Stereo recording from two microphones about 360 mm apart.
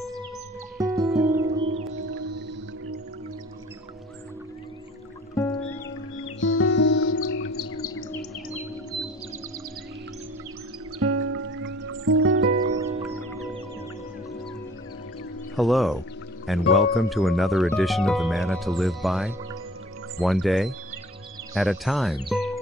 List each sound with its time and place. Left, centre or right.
0.7 s music: centre
2.0 s music: right
5.3 s music: centre
6.2 s music: left
7.3 s bird: left
11.0 s music: right
12.8 s music: centre
15.5 s speech: centre
22.3 s music: centre